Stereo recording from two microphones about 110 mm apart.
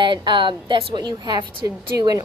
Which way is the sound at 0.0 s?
45° right (ahead or behind).